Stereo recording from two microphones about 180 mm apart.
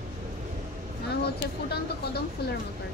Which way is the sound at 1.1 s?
65° left (ahead or behind).